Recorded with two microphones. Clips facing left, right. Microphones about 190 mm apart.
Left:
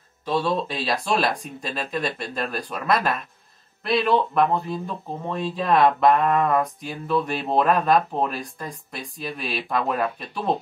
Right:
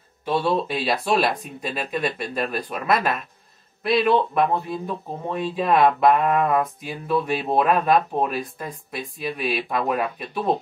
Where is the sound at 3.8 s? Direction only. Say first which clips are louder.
Right 2 dB; centre (ahead or behind).